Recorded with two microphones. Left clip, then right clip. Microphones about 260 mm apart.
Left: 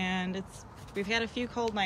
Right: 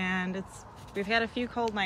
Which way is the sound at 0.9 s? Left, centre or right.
Centre.